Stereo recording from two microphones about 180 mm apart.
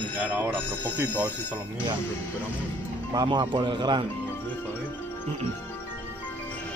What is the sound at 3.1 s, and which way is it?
Speech, 25° right (ahead or behind).